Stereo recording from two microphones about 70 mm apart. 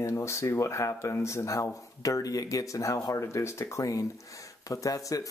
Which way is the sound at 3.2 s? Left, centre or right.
Left.